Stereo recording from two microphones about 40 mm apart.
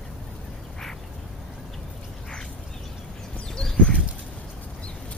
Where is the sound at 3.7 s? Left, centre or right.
Left.